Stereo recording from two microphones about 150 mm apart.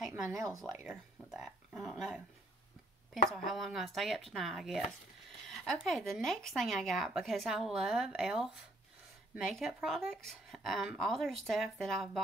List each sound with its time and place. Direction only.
0.4 s speech: 20° right (ahead or behind)
0.8 s speech: 5° right (ahead or behind)
3.3 s speech: centre (ahead or behind)
9.5 s speech: centre (ahead or behind)